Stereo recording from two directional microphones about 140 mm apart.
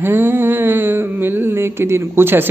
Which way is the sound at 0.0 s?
15° right (ahead or behind).